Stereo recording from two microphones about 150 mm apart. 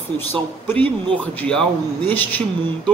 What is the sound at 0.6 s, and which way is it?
Speech, 10° left (ahead or behind).